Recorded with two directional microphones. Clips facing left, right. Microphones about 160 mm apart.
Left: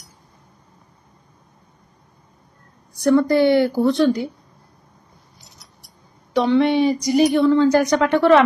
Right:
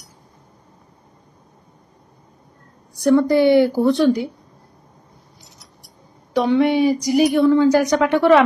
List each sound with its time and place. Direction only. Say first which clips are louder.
3.0 s speech: right 1 dB; 15° right (ahead or behind)
6.3 s speech: even; 10° right (ahead or behind)